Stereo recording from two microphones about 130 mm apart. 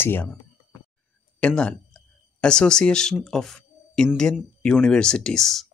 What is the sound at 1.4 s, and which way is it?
Speech, 10° left (ahead or behind).